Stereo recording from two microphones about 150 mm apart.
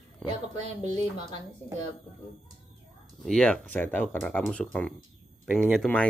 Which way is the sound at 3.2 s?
5° left (ahead or behind).